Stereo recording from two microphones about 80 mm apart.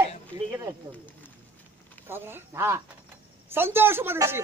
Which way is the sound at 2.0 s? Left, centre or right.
Right.